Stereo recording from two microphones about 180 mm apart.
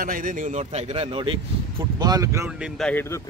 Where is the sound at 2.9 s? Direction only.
10° left (ahead or behind).